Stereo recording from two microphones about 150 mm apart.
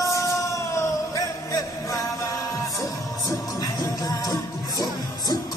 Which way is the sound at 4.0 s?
25° left (ahead or behind).